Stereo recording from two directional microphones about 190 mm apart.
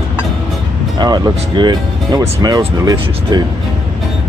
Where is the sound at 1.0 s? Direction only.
20° right (ahead or behind).